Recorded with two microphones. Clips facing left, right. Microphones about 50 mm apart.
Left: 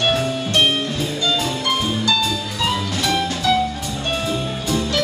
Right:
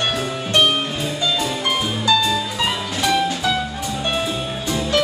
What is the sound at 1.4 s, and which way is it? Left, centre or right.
Music, centre.